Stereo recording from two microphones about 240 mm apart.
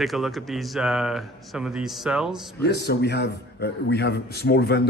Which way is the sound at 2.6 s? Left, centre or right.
Left.